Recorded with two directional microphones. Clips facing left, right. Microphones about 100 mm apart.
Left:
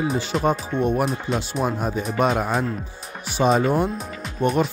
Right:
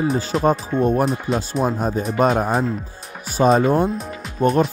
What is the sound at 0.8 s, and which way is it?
Music, 40° right (ahead or behind).